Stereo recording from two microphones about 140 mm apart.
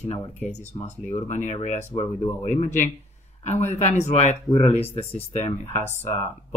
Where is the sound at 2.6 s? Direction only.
60° left (ahead or behind).